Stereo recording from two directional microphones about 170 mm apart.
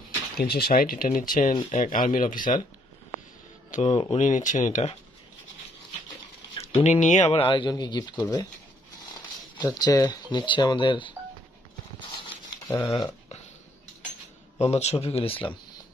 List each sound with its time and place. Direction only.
0.4 s speech: 65° left (ahead or behind)
3.7 s speech: 35° left (ahead or behind)
6.8 s speech: 45° left (ahead or behind); by 8.5 s 25° left (ahead or behind)
9.6 s speech: 25° left (ahead or behind)
12.7 s speech: 25° left (ahead or behind)
14.6 s a man's voice: 40° left (ahead or behind)